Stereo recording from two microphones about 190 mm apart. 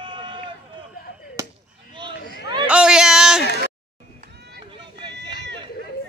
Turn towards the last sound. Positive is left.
turn(degrees=-25)  # may be behind; listen again after turning